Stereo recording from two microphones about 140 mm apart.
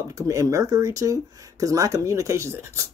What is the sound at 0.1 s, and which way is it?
Speech, 20° right (ahead or behind).